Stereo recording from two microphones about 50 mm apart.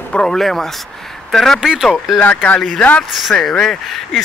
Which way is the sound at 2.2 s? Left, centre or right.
Left.